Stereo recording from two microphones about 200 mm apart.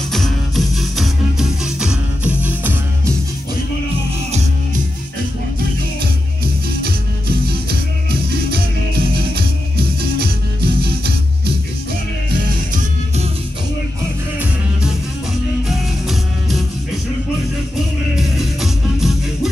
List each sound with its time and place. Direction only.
0.1 s music: centre (ahead or behind)
6.4 s music: 50° right (ahead or behind)
12.7 s music: 35° right (ahead or behind)
16.1 s music: centre (ahead or behind)
18.1 s music: centre (ahead or behind)